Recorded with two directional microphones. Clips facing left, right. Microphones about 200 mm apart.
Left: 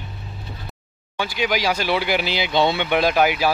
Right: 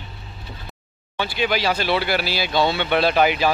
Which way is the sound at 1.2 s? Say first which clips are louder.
Even; 10° left (ahead or behind).